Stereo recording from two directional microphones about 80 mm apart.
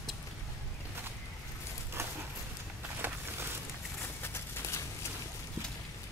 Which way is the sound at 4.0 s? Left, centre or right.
Left.